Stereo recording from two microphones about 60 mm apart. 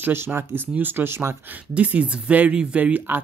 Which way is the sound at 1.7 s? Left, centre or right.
Right.